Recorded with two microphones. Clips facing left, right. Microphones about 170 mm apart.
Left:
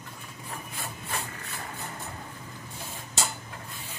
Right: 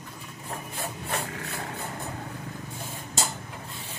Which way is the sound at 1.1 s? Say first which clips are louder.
Right 4 dB; 70° right (ahead or behind).